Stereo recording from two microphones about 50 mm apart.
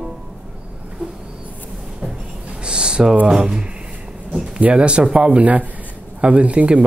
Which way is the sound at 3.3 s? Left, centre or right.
Centre.